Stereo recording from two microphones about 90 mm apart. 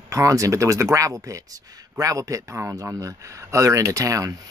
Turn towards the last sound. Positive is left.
turn(degrees=-35)  # may be behind; listen again after turning